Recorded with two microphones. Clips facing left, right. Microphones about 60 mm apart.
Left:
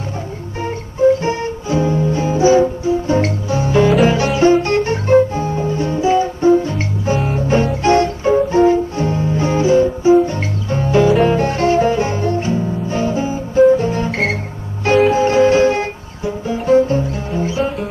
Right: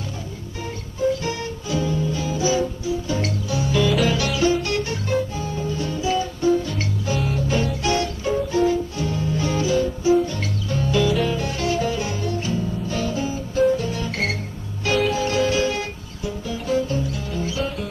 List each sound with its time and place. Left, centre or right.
0.9 s music: left